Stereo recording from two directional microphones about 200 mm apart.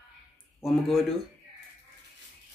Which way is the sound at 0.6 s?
Centre (ahead or behind).